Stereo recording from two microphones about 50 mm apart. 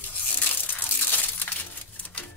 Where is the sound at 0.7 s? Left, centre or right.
Left.